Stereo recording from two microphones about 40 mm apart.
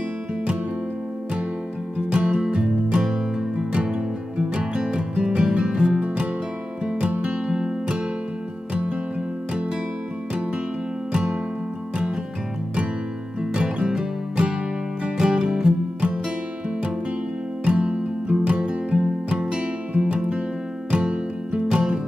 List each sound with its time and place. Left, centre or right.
2.0 s music: right
11.1 s music: right
13.4 s music: right
17.6 s music: right